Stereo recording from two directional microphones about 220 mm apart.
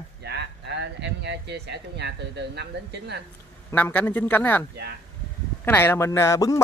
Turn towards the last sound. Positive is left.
turn(degrees=15)  # may be behind; listen again after turning